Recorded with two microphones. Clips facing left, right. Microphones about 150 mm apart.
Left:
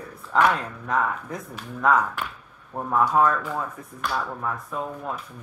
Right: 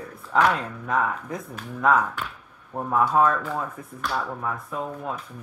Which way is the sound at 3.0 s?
20° right (ahead or behind).